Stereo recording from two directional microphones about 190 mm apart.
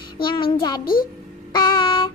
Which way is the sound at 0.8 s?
50° left (ahead or behind).